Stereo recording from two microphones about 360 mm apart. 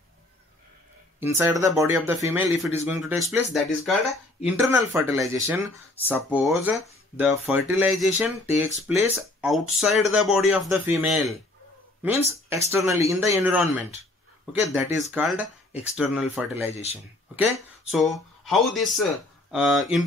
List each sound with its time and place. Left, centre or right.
1.2 s speech: centre
4.0 s speech: centre
4.6 s speech: centre
17.9 s speech: centre